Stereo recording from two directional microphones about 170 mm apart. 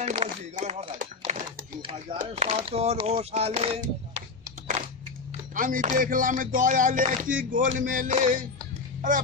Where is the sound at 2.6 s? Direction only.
35° right (ahead or behind).